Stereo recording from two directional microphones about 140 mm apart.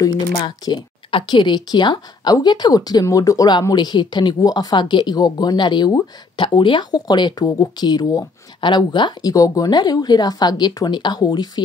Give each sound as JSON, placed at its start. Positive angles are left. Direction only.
{"t": 0.4, "sound": "speech", "side_deg": 35}